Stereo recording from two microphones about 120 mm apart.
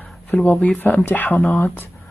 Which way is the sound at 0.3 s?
15° left (ahead or behind).